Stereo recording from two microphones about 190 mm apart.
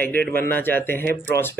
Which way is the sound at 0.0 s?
10° left (ahead or behind).